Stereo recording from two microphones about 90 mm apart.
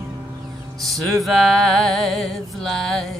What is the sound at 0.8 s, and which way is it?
Music, centre (ahead or behind).